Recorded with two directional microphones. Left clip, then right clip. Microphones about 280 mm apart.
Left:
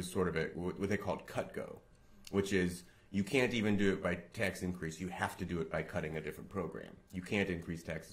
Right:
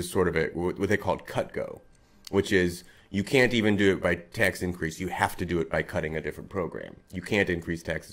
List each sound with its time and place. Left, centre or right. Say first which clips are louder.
0.1 s speech: right 10 dB; right